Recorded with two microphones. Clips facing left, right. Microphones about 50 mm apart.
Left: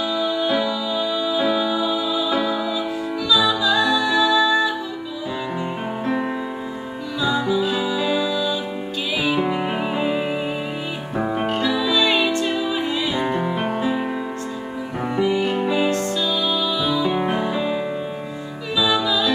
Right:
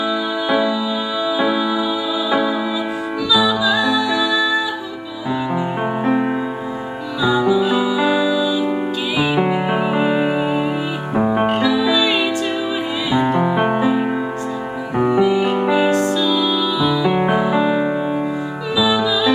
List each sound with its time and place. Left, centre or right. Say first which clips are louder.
0.1 s music: right 2 dB; centre
3.3 s music: right 2 dB; centre
6.0 s music: right 5 dB; right
7.2 s music: right 5 dB; centre
13.4 s music: right 6 dB; right
15.0 s music: right 6 dB; centre
17.0 s music: right 4 dB; right
17.6 s music: right 6 dB; centre
18.8 s music: right 3 dB; centre